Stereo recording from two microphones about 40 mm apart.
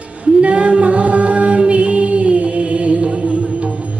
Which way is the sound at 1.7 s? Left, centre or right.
Right.